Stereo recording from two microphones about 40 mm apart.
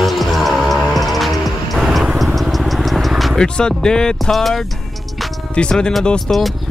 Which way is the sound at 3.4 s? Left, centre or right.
Centre.